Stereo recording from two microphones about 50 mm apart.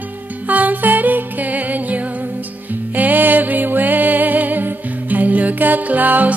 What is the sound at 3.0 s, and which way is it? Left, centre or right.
Music, right.